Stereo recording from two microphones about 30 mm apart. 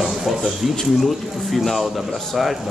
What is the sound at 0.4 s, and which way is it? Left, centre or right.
A man's voice, centre.